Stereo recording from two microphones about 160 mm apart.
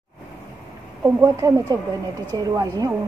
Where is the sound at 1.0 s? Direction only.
20° right (ahead or behind).